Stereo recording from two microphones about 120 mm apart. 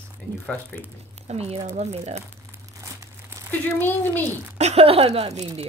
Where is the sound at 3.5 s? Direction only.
15° left (ahead or behind).